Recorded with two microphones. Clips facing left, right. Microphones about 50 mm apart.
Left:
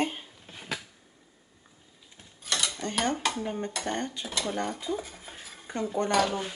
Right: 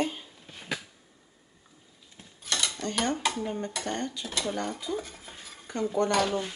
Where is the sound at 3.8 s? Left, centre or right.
Left.